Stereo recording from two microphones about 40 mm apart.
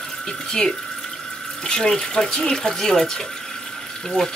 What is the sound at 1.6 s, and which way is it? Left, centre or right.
Speech, left.